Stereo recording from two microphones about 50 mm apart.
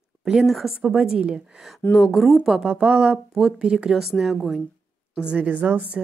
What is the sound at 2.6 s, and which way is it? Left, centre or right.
Speech, centre.